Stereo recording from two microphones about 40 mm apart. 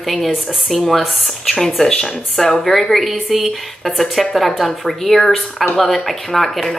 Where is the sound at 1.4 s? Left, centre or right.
Centre.